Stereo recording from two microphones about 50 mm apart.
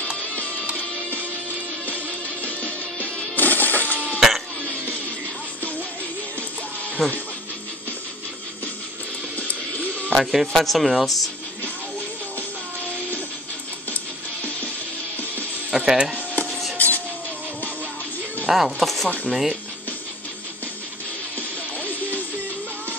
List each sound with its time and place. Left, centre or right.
0.4 s music: left
3.3 s music: left
4.2 s music: centre
7.0 s speech: centre
9.4 s music: left
10.1 s speech: centre
15.7 s music: centre
16.7 s vehicle: left
18.5 s speech: centre
21.4 s music: left